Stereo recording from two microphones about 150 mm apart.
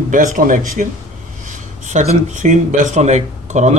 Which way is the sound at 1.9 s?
55° right (ahead or behind).